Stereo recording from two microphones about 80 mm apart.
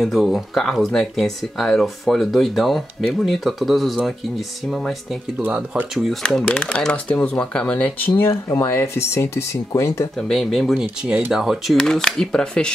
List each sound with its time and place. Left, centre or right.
0.0 s speech: centre
5.4 s speech: centre
5.9 s speech: centre; by 8.3 s left
8.6 s speech: left
10.1 s speech: centre
11.7 s speech: centre